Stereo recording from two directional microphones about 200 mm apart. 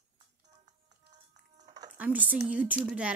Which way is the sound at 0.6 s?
35° right (ahead or behind).